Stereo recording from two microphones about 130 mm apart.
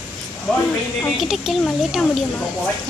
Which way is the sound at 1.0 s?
Centre (ahead or behind).